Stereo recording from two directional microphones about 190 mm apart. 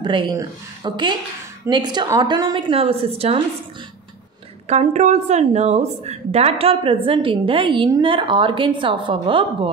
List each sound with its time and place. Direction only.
0.0 s a woman's voice: 25° right (ahead or behind)
4.6 s a woman's voice: 35° right (ahead or behind)